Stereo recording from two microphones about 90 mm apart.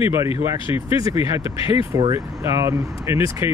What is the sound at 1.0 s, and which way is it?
Speech, 40° right (ahead or behind).